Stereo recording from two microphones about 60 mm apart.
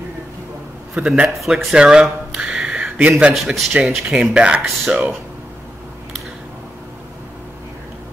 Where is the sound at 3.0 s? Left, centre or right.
Right.